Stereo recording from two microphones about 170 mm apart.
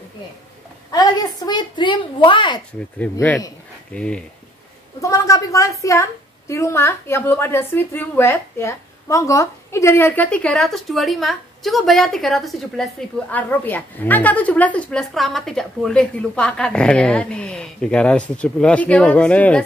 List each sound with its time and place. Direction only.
0.9 s a woman's voice: 25° left (ahead or behind)
3.0 s a woman's voice: 10° left (ahead or behind)
5.0 s a woman's voice: 20° left (ahead or behind)